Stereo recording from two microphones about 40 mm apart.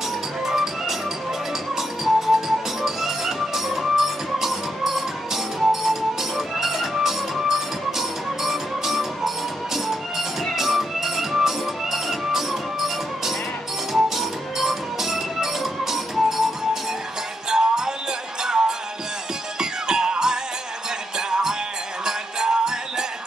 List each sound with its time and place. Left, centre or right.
0.5 s music: centre
10.5 s music: centre
17.5 s music: centre